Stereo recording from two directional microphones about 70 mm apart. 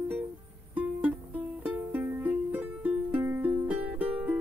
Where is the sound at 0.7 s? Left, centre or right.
Right.